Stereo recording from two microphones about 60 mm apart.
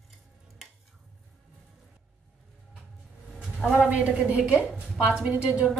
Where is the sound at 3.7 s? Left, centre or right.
Right.